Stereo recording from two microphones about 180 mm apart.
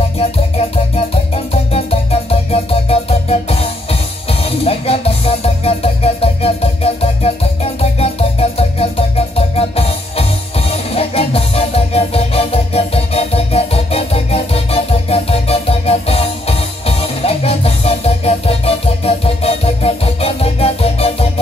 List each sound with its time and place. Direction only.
0.6 s music: 30° left (ahead or behind)